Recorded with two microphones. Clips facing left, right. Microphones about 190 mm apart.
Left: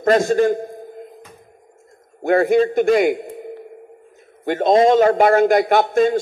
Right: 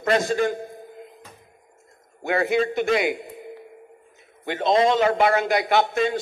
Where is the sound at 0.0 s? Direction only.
50° left (ahead or behind).